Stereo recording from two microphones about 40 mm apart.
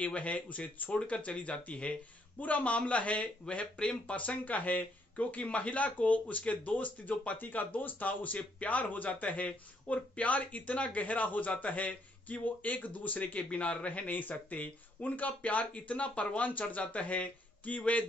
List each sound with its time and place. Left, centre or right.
0.0 s speech: left
0.9 s speech: left
4.1 s speech: left
13.4 s speech: left
14.0 s speech: left